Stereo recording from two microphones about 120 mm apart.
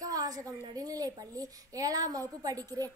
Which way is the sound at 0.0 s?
30° right (ahead or behind).